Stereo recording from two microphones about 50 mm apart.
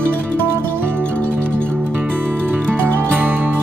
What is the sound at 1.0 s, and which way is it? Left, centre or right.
Music, left.